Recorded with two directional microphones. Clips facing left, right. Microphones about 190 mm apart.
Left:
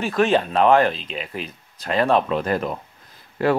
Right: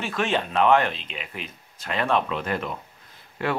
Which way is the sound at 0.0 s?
40° left (ahead or behind).